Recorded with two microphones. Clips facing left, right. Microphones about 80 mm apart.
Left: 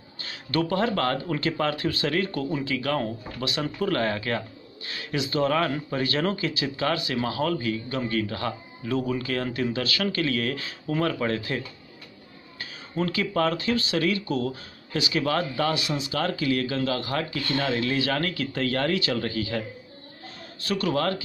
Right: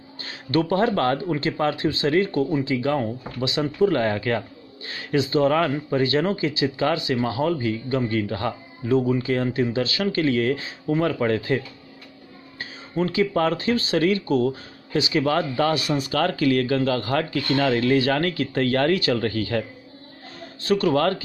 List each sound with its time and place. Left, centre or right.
0.2 s speech: right
20.6 s speech: right